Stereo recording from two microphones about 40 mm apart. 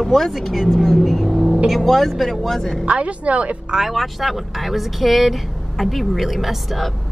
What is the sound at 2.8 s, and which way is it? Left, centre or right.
Speech, right.